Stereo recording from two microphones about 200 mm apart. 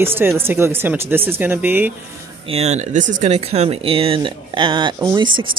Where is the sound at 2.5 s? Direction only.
35° right (ahead or behind).